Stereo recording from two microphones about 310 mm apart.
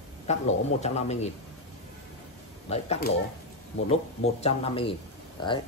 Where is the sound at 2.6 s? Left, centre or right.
Left.